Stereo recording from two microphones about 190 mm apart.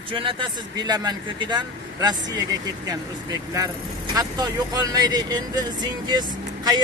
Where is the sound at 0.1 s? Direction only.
25° right (ahead or behind).